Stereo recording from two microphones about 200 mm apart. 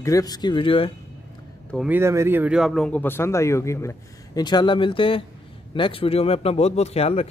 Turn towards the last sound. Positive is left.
turn(degrees=30)  # may be behind; listen again after turning